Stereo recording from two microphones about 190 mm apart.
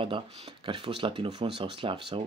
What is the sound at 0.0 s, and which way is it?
Speech, 25° right (ahead or behind).